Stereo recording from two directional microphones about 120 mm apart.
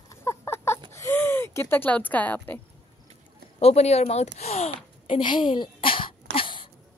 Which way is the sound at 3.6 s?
60° left (ahead or behind).